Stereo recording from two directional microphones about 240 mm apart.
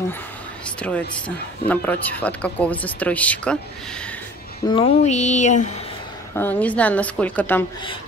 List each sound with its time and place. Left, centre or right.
0.7 s speech: centre
4.6 s speech: left
6.3 s a woman's voice: centre